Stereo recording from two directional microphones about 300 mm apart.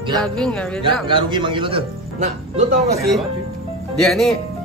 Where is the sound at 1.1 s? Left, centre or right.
Centre.